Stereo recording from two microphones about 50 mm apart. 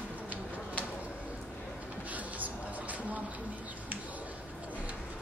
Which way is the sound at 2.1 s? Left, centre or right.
Right.